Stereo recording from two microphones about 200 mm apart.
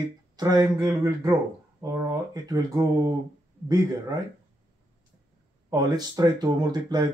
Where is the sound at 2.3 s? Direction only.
20° right (ahead or behind).